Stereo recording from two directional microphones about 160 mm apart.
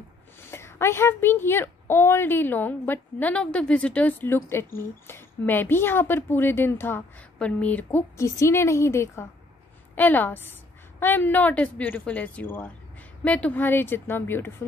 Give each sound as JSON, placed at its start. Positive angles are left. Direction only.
{"t": 0.5, "sound": "a woman's voice", "side_deg": 15}